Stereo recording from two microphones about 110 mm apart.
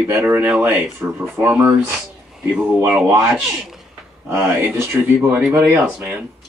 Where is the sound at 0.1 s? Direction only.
20° right (ahead or behind).